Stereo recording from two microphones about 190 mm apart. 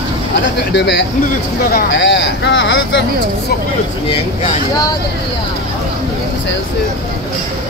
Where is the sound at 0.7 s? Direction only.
65° left (ahead or behind).